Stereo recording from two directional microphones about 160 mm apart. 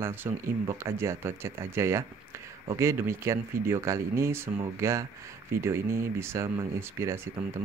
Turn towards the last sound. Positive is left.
turn(degrees=-15)  # may be behind; listen again after turning